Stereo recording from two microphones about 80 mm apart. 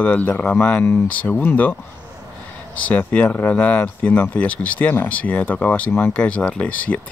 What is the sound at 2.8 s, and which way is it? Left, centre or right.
Speech, centre.